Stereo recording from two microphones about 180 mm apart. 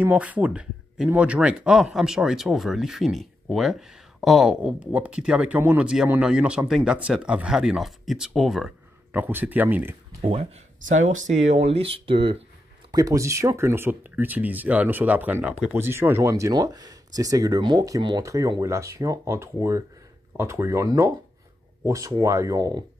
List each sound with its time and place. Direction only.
0.0 s speech: 10° right (ahead or behind)
10.2 s speech: 35° right (ahead or behind)
12.9 s speech: 20° right (ahead or behind)